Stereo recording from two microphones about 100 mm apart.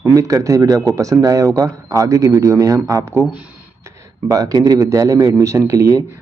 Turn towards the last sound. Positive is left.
turn(degrees=-30)  # may be behind; listen again after turning